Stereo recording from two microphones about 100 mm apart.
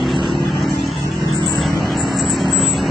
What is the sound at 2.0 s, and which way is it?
Vehicle, centre (ahead or behind).